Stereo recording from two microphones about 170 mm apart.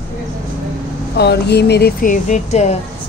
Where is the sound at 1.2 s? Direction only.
75° left (ahead or behind).